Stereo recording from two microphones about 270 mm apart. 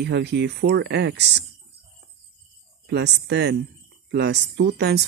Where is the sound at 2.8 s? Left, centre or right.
Right.